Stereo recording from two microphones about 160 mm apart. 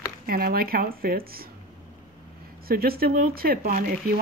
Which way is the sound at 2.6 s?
70° right (ahead or behind).